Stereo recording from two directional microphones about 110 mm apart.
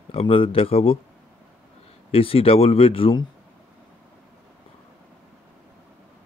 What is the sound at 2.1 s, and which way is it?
Speech, 60° left (ahead or behind).